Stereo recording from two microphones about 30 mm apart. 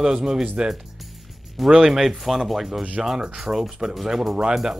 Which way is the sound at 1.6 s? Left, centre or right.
Centre.